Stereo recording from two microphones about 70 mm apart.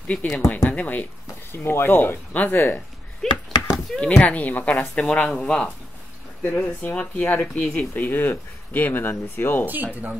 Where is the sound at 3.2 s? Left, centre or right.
Centre.